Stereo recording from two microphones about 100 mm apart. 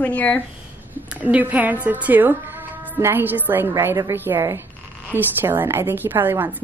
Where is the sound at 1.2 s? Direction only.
15° right (ahead or behind).